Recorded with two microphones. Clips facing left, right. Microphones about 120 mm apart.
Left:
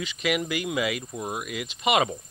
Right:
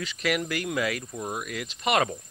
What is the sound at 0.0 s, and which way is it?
Cricket, centre (ahead or behind).